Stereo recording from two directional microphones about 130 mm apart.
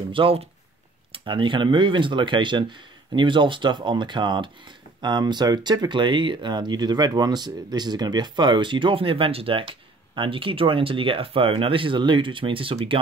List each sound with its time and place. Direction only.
0.1 s speech: 45° right (ahead or behind)